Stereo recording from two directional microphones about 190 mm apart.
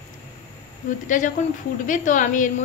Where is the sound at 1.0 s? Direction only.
40° left (ahead or behind).